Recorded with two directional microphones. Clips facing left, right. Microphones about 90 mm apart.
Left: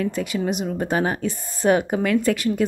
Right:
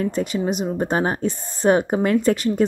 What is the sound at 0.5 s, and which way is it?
Speech, 25° right (ahead or behind).